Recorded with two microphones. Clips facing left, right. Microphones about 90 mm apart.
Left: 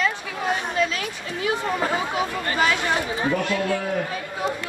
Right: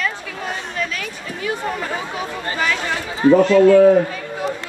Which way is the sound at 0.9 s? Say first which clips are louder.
Right 1 dB; 30° left (ahead or behind).